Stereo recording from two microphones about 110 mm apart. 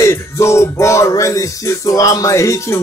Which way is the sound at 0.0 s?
25° left (ahead or behind).